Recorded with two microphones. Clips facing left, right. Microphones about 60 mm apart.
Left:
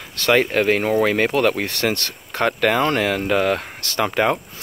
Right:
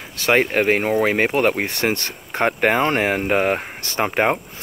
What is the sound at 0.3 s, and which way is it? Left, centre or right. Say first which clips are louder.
Speech: even; right.